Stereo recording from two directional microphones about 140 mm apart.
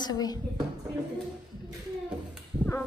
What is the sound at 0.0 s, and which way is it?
Speech, 30° left (ahead or behind).